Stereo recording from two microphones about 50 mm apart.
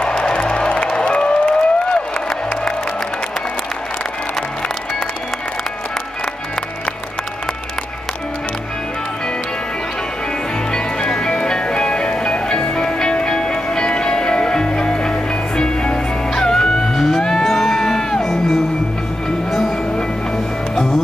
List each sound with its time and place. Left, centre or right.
0.0 s music: centre
10.7 s music: centre
20.7 s music: centre